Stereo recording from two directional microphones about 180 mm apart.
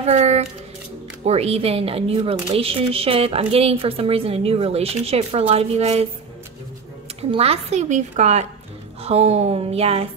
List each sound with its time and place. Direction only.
0.0 s speech: 35° right (ahead or behind)
7.2 s speech: 35° right (ahead or behind)